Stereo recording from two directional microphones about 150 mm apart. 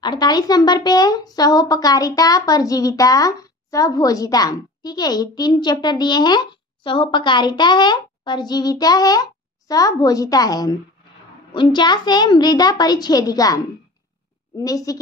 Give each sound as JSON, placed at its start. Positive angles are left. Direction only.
{"t": 0.0, "sound": "speech", "side_deg": 30}
{"t": 14.6, "sound": "speech", "side_deg": 25}